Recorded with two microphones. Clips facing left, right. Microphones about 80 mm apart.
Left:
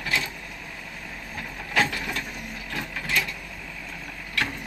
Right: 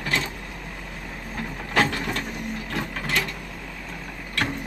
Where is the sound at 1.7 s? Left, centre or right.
Right.